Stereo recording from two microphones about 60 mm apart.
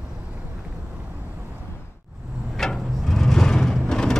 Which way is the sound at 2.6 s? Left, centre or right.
Centre.